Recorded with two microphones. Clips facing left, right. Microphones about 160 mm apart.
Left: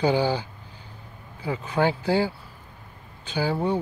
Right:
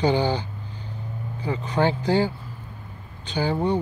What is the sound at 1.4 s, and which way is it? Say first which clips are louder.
Speech: right 1 dB; 5° left (ahead or behind).